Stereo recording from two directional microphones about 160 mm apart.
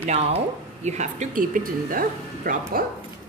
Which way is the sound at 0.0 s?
35° right (ahead or behind).